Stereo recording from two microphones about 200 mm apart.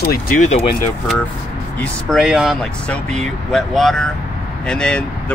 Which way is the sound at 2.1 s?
Centre (ahead or behind).